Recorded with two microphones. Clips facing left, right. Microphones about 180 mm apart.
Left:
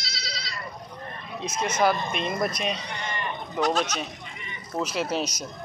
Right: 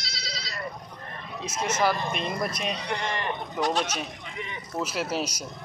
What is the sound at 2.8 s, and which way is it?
Speech, 80° right.